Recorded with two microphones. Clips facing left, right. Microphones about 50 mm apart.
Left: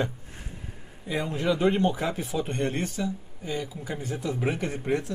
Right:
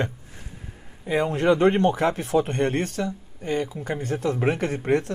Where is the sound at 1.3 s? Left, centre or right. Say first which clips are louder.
Right 5 dB; right.